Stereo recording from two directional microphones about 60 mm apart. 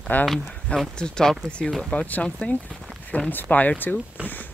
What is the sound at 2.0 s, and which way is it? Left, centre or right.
Speech, left.